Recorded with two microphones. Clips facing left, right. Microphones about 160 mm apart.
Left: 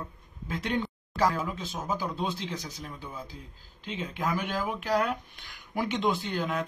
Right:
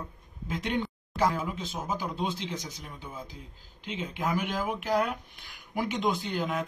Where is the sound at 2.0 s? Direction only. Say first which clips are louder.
Even; 15° right (ahead or behind).